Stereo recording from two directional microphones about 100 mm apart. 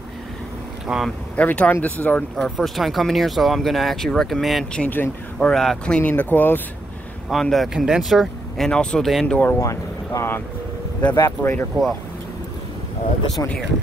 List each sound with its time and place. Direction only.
0.8 s speech: 5° right (ahead or behind)
1.3 s speech: 15° left (ahead or behind)
2.4 s speech: centre (ahead or behind)
4.8 s speech: 20° left (ahead or behind)
5.5 s speech: 5° left (ahead or behind); by 6.6 s 20° left (ahead or behind)
7.2 s speech: centre (ahead or behind)
9.4 s speech: 30° left (ahead or behind)
13.4 s speech: 30° left (ahead or behind)